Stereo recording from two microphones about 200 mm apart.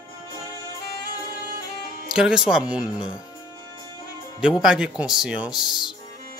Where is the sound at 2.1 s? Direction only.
5° right (ahead or behind).